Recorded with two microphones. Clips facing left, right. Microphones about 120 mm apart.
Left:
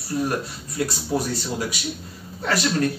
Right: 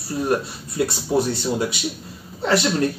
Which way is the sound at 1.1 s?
25° right (ahead or behind).